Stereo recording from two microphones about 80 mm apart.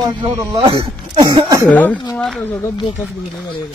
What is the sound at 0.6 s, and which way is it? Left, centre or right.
Speech, right.